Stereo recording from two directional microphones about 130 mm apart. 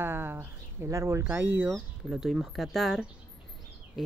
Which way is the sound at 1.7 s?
Centre (ahead or behind).